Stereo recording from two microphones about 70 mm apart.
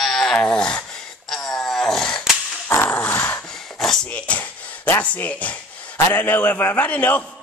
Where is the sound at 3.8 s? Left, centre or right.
Centre.